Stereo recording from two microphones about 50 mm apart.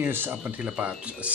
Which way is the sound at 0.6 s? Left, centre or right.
Right.